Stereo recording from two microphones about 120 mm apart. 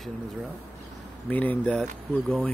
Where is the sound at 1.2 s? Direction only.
15° left (ahead or behind).